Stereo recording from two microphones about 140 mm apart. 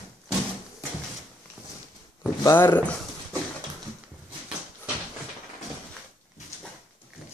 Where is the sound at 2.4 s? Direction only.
15° left (ahead or behind).